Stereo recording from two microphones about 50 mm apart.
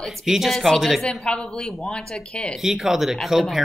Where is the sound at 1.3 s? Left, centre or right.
Centre.